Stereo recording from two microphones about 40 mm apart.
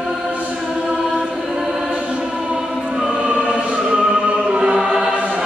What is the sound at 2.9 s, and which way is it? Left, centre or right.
Choir, right.